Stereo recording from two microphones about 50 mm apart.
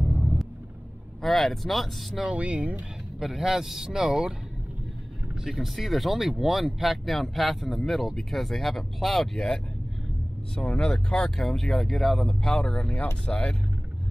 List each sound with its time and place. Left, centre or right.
0.0 s rumble: centre
1.2 s speech: centre
2.2 s speech: right
3.2 s speech: centre
5.3 s speech: centre
10.6 s speech: left
11.3 s speech: centre
12.5 s speech: centre